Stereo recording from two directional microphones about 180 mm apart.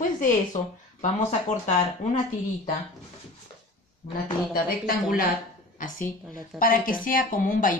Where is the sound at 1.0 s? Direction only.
40° left (ahead or behind).